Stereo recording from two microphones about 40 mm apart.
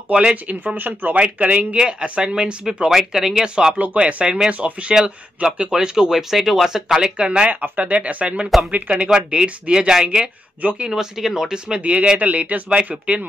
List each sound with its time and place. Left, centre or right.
0.1 s speech: right
0.7 s speech: right
1.1 s speech: right
1.8 s speech: right
2.6 s speech: centre
3.7 s speech: right
5.7 s speech: centre
7.0 s speech: right
9.3 s speech: right
10.0 s speech: right
10.9 s speech: centre
11.8 s speech: right